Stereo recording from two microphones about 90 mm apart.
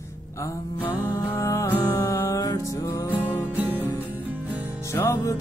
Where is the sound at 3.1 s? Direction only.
20° right (ahead or behind).